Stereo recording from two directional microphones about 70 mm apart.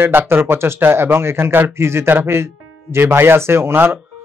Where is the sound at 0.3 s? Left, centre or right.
Right.